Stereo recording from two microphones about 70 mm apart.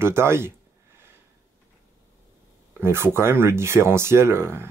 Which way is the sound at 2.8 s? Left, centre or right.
Right.